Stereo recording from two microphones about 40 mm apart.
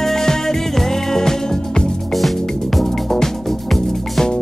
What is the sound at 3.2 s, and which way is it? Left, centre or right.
Music, centre.